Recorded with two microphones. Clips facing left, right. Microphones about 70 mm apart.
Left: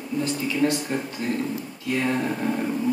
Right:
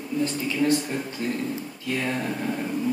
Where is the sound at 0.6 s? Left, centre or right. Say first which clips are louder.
Right 1 dB; left.